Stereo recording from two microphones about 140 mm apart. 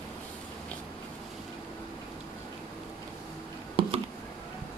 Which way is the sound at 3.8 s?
40° right (ahead or behind).